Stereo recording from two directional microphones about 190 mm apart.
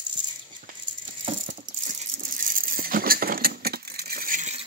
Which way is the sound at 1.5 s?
45° right (ahead or behind).